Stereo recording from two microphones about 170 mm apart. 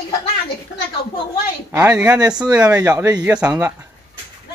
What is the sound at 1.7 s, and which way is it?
Speech, 10° right (ahead or behind).